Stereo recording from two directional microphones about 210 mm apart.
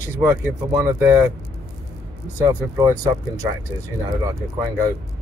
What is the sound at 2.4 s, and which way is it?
Speech, 15° right (ahead or behind).